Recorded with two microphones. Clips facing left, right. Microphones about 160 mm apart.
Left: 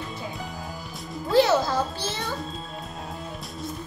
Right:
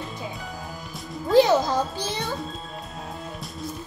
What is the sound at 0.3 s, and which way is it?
Music, centre (ahead or behind).